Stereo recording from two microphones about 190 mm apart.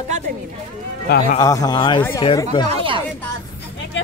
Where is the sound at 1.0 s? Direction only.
50° left (ahead or behind).